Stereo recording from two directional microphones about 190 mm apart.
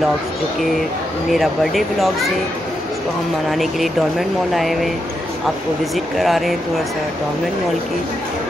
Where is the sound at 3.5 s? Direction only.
Centre (ahead or behind).